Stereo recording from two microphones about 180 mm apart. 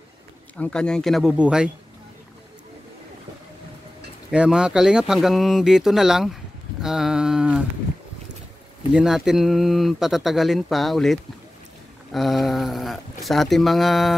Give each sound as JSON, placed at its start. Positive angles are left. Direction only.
{"t": 0.6, "sound": "speech", "side_deg": 5}
{"t": 4.3, "sound": "speech", "side_deg": -5}
{"t": 8.9, "sound": "speech", "side_deg": -5}